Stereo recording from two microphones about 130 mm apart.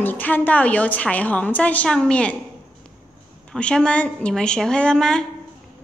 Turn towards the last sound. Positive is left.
turn(degrees=5)  # may be behind; listen again after turning